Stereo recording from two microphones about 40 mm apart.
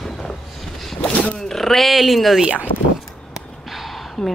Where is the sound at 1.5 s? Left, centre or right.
Centre.